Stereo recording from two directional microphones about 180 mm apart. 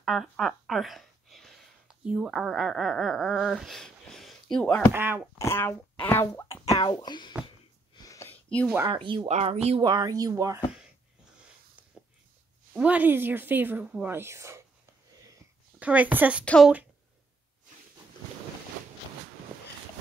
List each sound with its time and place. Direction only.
0.0 s speech: centre (ahead or behind)
4.9 s a woman's voice: 10° right (ahead or behind)
5.4 s speech: 15° left (ahead or behind)
6.4 s speech: 30° left (ahead or behind)
7.9 s a sound: 20° left (ahead or behind)
8.8 s speech: 25° right (ahead or behind)
9.8 s speech: 20° right (ahead or behind)
12.7 s a woman's voice: 10° right (ahead or behind)
15.8 s a woman's voice: 10° right (ahead or behind)
16.4 s a woman's voice: 5° left (ahead or behind)